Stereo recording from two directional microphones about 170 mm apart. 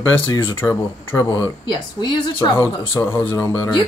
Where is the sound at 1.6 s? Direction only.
25° left (ahead or behind).